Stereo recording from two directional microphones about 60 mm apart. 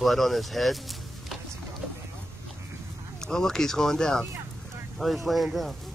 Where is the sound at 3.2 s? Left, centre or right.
Centre.